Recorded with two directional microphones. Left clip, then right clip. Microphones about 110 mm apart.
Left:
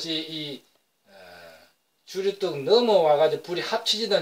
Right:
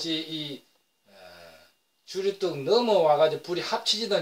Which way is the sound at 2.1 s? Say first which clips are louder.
Left 1 dB; 30° right (ahead or behind).